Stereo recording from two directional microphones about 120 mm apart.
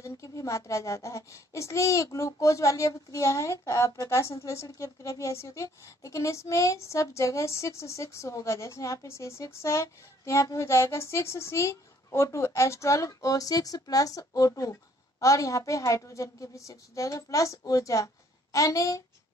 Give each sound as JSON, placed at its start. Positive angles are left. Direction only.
{"t": 0.0, "sound": "a woman's voice", "side_deg": 25}